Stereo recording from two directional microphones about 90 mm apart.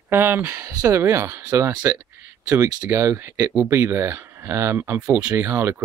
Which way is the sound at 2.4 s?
40° right (ahead or behind).